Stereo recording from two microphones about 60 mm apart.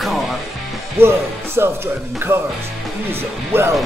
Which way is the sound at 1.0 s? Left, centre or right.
Right.